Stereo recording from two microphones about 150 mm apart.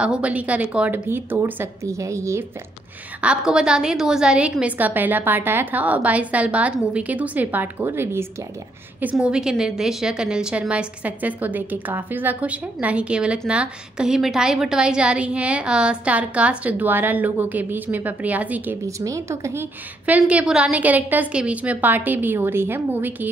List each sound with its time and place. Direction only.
0.0 s a woman's voice: 5° right (ahead or behind)
3.2 s a woman's voice: 5° right (ahead or behind)
9.0 s a woman's voice: 5° right (ahead or behind)
18.9 s speech: 20° right (ahead or behind)
20.1 s a woman's voice: 10° right (ahead or behind)